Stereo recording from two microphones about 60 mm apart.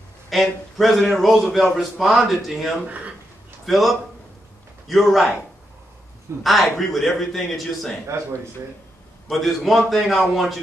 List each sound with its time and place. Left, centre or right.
0.3 s a man's voice: centre
6.4 s a man's voice: centre
8.1 s speech: right
9.3 s a man's voice: centre